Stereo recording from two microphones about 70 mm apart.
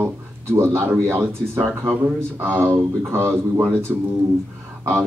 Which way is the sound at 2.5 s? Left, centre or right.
Right.